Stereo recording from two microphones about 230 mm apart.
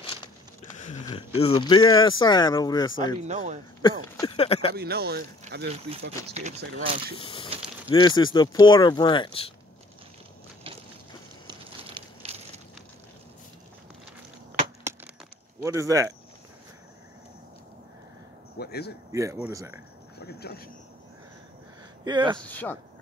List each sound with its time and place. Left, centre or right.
0.0 s a sound: left
1.1 s speech: left
3.3 s speech: right
3.8 s speech: left
4.7 s speech: right
5.9 s speech: right
7.2 s speech: left
11.4 s a sound: right
15.6 s speech: centre
18.6 s speech: left
19.1 s speech: centre
20.2 s speech: left
22.0 s speech: centre
22.4 s speech: centre